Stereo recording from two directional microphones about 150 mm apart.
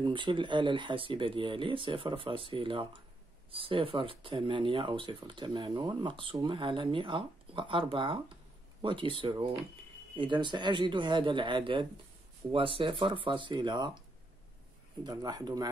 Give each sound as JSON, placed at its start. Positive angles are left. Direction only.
{"t": 0.0, "sound": "speech", "side_deg": -35}
{"t": 15.0, "sound": "speech", "side_deg": -25}